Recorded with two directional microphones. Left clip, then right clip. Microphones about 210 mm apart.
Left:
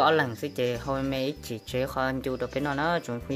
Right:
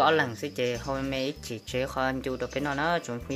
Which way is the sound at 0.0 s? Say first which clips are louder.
Left 1 dB; 15° left (ahead or behind).